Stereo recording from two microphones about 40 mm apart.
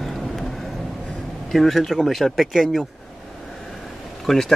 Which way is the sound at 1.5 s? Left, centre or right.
Centre.